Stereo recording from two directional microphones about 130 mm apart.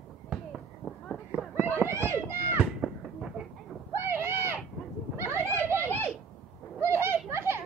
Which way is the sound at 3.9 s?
20° right (ahead or behind).